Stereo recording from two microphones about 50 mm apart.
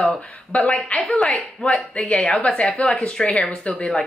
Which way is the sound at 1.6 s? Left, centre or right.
Left.